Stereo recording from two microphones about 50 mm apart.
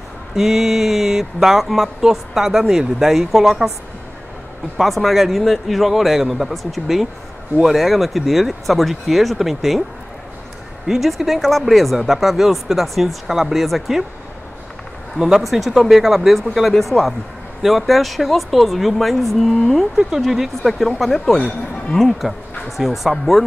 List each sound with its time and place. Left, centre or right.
0.4 s speech: centre
4.7 s speech: centre
10.9 s speech: centre
15.1 s speech: centre